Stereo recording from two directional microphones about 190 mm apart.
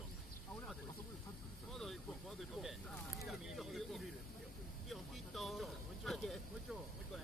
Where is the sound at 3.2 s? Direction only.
Centre (ahead or behind).